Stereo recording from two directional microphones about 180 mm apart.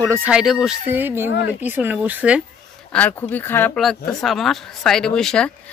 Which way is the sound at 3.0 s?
10° left (ahead or behind).